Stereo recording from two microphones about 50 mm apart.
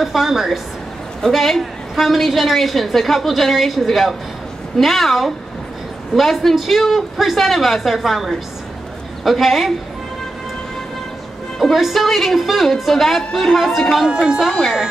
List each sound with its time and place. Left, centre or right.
0.0 s a woman's voice: centre
11.6 s a woman's voice: centre
14.0 s speech: centre